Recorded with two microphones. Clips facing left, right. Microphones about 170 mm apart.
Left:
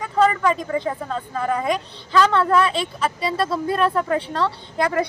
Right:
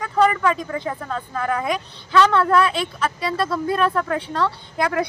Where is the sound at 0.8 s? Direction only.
5° left (ahead or behind).